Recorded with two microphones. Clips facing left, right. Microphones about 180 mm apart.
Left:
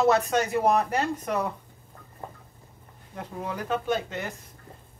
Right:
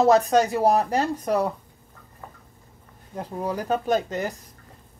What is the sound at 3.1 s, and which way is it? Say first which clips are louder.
Speech: right 5 dB; 35° right (ahead or behind).